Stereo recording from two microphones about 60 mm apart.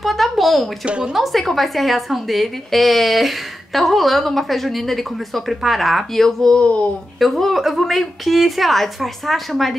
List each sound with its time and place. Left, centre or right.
0.0 s speech: centre
0.8 s a woman's voice: centre
1.1 s a woman's voice: centre
6.6 s speech: left
7.2 s a woman's voice: centre